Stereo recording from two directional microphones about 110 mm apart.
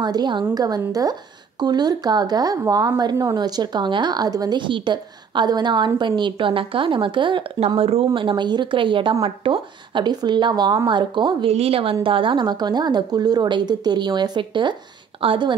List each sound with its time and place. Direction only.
0.0 s a woman's voice: 40° right (ahead or behind)
7.6 s a woman's voice: 60° right (ahead or behind); by 11.3 s 45° right (ahead or behind)
11.4 s a woman's voice: 65° right (ahead or behind)